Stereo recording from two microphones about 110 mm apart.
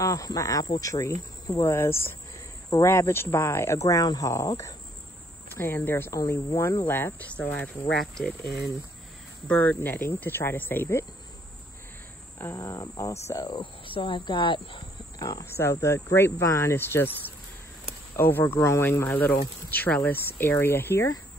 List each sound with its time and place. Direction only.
0.0 s speech: 30° left (ahead or behind); by 7.7 s 15° left (ahead or behind)
7.9 s speech: 5° left (ahead or behind)
9.5 s speech: 15° left (ahead or behind)
12.4 s speech: 25° left (ahead or behind)
13.6 s speech: 50° left (ahead or behind)
15.4 s speech: 25° left (ahead or behind)
18.1 s speech: 20° left (ahead or behind)